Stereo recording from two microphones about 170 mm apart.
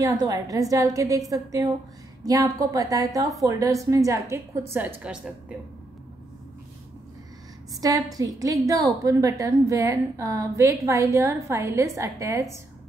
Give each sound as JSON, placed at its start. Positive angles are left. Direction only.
{"t": 0.0, "sound": "a woman's voice", "side_deg": -20}
{"t": 7.8, "sound": "a woman's voice", "side_deg": -20}